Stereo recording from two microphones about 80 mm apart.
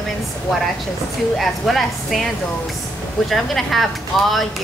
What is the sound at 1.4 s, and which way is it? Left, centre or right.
Speech, centre.